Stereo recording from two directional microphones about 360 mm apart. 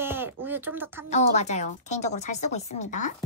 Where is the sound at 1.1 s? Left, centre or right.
Centre.